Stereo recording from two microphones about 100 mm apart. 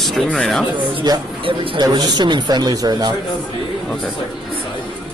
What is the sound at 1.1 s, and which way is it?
A man's voice, 45° right (ahead or behind).